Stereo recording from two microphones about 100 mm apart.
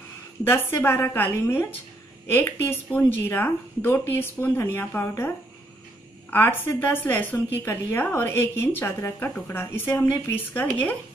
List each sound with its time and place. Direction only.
0.4 s a woman's voice: 25° left (ahead or behind)
6.3 s a woman's voice: 20° left (ahead or behind)